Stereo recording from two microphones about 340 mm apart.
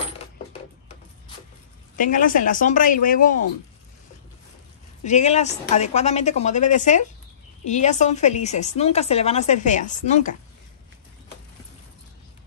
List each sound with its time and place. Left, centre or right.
2.0 s speech: left
5.0 s speech: centre